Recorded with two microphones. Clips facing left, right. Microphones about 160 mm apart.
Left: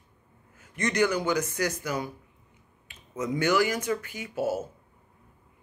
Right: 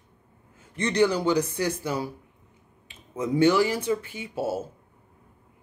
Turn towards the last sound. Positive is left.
turn(degrees=-30)  # may be behind; listen again after turning